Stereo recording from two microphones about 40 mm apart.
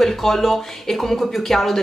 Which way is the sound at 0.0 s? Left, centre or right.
Centre.